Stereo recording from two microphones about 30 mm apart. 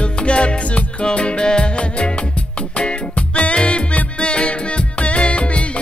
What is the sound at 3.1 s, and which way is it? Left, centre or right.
Music, left.